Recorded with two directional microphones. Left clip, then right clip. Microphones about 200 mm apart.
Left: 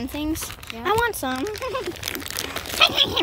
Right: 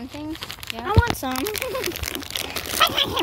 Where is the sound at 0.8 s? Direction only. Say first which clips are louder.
Left 3 dB; 35° left (ahead or behind).